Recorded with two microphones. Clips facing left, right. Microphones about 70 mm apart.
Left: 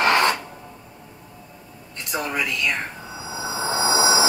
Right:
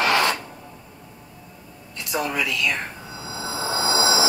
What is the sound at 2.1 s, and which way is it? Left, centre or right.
Speech, left.